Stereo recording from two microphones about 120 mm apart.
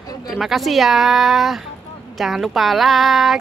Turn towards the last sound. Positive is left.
turn(degrees=0)  # may be behind; listen again after turning